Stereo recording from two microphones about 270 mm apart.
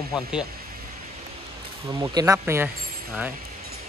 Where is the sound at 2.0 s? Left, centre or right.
Centre.